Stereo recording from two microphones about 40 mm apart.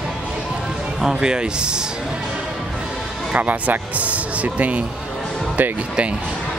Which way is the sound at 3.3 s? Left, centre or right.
Right.